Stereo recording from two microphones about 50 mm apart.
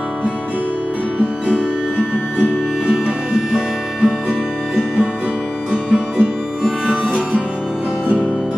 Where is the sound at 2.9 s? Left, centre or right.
Centre.